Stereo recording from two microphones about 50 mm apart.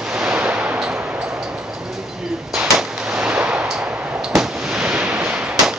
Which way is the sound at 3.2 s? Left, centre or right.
Right.